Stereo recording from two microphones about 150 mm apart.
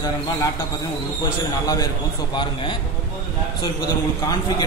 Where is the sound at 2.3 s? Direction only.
30° left (ahead or behind).